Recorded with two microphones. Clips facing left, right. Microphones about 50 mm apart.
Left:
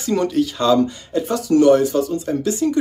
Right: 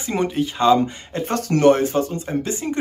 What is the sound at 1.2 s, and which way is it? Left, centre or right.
Speech, right.